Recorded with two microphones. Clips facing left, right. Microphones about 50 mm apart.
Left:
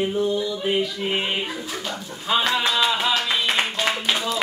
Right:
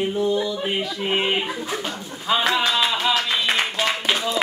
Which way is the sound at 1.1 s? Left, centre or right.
Right.